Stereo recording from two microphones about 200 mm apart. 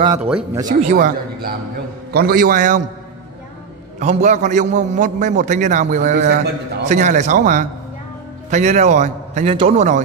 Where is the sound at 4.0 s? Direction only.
35° right (ahead or behind).